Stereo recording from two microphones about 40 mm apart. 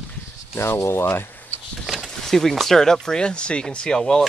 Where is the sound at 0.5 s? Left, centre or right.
Left.